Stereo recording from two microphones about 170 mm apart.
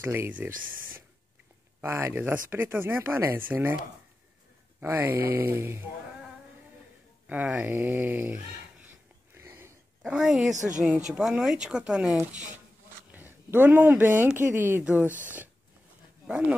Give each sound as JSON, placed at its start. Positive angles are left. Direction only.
{"t": 0.0, "sound": "speech", "side_deg": -15}
{"t": 0.5, "sound": "speech", "side_deg": -55}
{"t": 1.8, "sound": "speech", "side_deg": -15}
{"t": 4.7, "sound": "speech", "side_deg": -10}
{"t": 7.2, "sound": "speech", "side_deg": -10}
{"t": 9.3, "sound": "a sound", "side_deg": -15}
{"t": 10.5, "sound": "speech", "side_deg": -45}
{"t": 10.8, "sound": "speech", "side_deg": -5}